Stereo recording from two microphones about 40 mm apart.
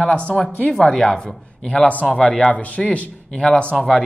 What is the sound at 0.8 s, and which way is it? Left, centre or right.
A man's voice, centre.